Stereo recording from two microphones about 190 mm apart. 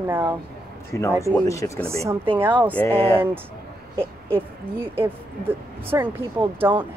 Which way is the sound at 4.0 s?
10° right (ahead or behind).